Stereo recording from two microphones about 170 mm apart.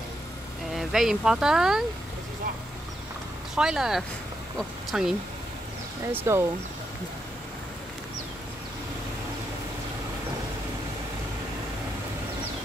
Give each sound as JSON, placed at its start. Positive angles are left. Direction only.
{"t": 0.7, "sound": "speech", "side_deg": 0}
{"t": 3.5, "sound": "speech", "side_deg": -5}
{"t": 6.1, "sound": "speech", "side_deg": -15}